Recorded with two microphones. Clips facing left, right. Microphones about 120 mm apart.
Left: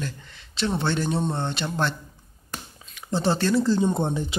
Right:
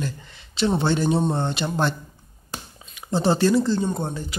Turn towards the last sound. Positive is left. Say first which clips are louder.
# left 3 dB
turn(degrees=20)  # may be behind; listen again after turning